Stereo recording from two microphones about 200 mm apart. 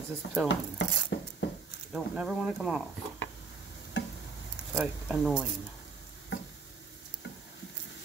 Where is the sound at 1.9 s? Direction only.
Centre (ahead or behind).